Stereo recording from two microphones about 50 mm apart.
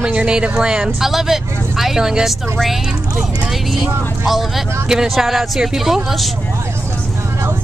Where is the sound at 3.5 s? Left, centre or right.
Centre.